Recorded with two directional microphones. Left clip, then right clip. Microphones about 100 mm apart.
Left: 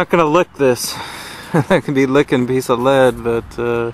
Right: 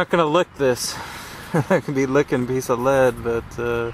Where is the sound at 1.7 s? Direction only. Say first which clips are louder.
Left 5 dB; 10° left (ahead or behind).